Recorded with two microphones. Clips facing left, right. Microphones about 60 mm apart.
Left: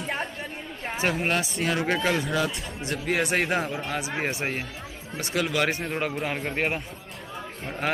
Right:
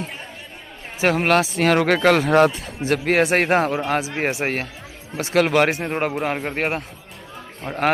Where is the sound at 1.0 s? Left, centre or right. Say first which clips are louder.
Right 9 dB; right.